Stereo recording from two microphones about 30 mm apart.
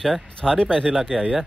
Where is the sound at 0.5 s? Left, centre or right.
Left.